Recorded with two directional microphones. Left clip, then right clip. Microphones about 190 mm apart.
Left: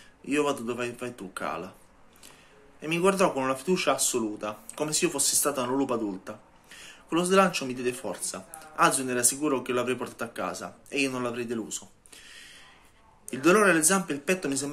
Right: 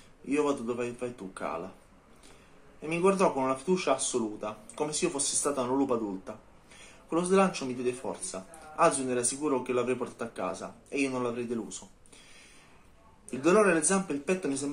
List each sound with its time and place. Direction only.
0.3 s speech: 30° left (ahead or behind)
2.8 s speech: 30° left (ahead or behind)
13.3 s speech: 30° left (ahead or behind)